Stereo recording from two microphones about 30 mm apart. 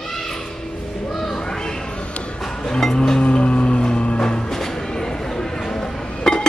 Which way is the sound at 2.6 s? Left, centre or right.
Left.